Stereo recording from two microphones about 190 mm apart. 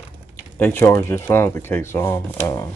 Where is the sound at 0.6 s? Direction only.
10° left (ahead or behind).